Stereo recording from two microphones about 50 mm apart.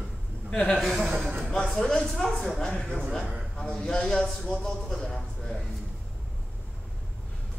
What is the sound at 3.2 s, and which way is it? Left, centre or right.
Speech, centre.